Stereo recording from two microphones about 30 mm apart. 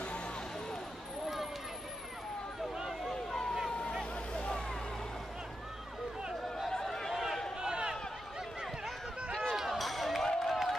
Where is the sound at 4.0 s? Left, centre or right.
Left.